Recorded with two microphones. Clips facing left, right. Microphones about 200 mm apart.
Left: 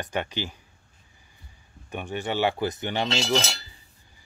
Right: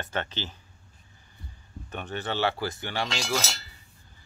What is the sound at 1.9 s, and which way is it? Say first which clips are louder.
Speech: left 3 dB; 10° left (ahead or behind).